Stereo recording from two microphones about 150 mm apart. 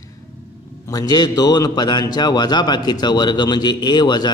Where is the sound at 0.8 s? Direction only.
25° left (ahead or behind).